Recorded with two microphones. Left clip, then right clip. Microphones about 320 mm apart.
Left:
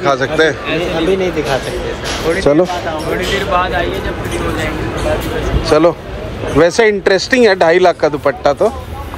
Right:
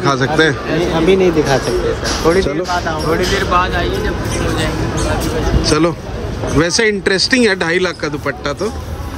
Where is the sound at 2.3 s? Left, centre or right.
Centre.